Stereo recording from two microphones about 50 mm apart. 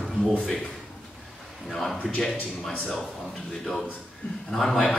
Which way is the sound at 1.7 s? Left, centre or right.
Centre.